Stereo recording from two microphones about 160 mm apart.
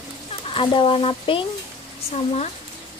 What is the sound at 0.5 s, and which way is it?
Speech, 35° left (ahead or behind).